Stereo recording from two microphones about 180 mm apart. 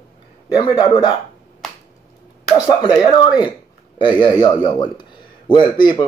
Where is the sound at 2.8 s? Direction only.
25° left (ahead or behind).